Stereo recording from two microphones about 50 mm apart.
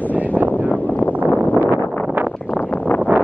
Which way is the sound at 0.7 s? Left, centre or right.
Left.